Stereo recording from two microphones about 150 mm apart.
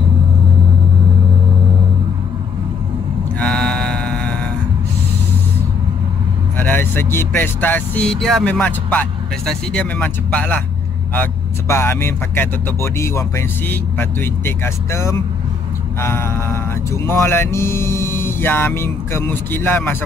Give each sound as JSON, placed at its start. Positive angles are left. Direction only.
{"t": 3.3, "sound": "mantra", "side_deg": 5}
{"t": 6.6, "sound": "speech", "side_deg": 15}
{"t": 11.7, "sound": "speech", "side_deg": 15}